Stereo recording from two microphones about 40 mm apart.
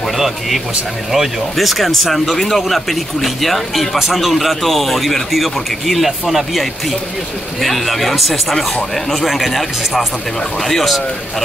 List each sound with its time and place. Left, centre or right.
1.1 s speech: centre